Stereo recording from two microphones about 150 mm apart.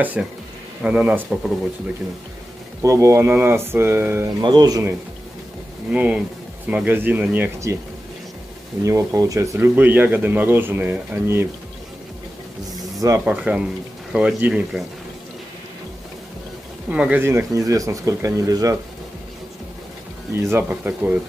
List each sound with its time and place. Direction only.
0.0 s speech: 10° right (ahead or behind)
2.8 s speech: 20° right (ahead or behind)
4.4 s speech: 30° right (ahead or behind)
5.9 s speech: 10° right (ahead or behind)
8.8 s speech: 20° right (ahead or behind)
13.2 s speech: 5° right (ahead or behind)
16.9 s speech: 10° right (ahead or behind)
20.3 s speech: 15° right (ahead or behind)